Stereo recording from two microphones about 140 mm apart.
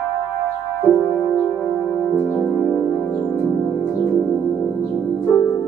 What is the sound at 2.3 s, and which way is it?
Music, 10° left (ahead or behind).